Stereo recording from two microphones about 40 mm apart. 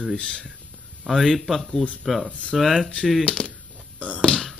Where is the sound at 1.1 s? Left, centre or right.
Centre.